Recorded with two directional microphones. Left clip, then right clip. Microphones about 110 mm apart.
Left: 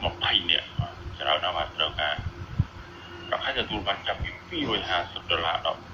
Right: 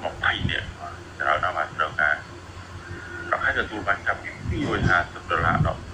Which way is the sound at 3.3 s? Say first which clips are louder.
Right 4 dB; 30° right (ahead or behind).